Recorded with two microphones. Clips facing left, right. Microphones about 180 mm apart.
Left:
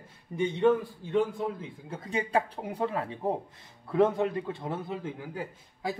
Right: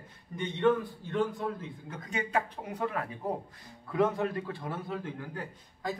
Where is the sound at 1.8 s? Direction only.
30° left (ahead or behind).